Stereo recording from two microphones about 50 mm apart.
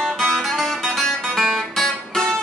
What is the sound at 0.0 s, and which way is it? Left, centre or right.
Music, centre.